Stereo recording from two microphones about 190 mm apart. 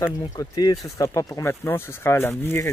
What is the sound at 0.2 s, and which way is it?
Speech, 20° left (ahead or behind).